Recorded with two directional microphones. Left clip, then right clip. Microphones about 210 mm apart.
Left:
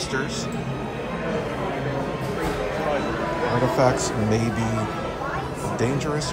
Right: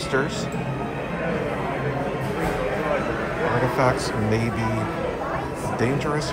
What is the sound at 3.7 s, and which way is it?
Speech, 15° left (ahead or behind).